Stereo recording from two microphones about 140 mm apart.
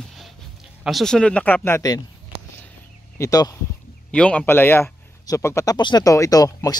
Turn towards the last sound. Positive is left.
turn(degrees=25)  # may be behind; listen again after turning